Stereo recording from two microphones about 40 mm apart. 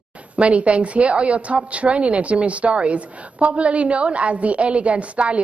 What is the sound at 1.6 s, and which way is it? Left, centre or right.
A woman's voice, right.